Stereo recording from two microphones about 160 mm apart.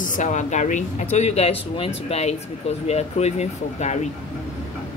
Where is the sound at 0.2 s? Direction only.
50° left (ahead or behind).